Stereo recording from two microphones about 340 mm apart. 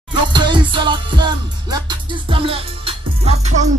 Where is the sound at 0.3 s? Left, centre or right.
Centre.